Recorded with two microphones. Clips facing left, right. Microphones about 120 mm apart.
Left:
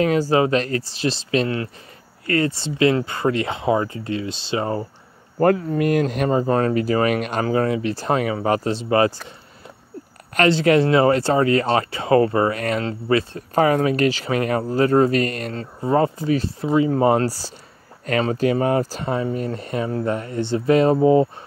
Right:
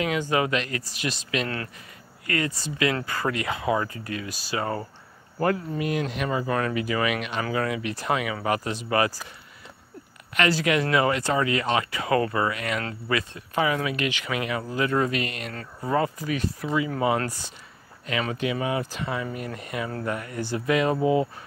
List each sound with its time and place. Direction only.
0.0 s speech: 35° left (ahead or behind)
5.4 s speech: 50° left (ahead or behind); by 9.2 s 30° left (ahead or behind)
10.5 s speech: 30° left (ahead or behind)
15.5 s speech: 30° left (ahead or behind)